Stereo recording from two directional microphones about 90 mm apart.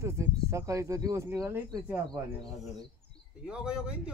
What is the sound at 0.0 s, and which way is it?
Speech, 30° right (ahead or behind).